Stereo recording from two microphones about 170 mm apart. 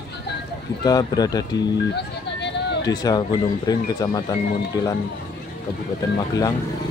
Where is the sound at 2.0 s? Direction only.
85° left.